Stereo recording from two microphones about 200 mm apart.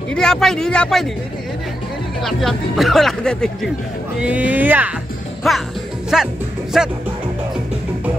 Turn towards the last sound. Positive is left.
turn(degrees=0)  # may be behind; listen again after turning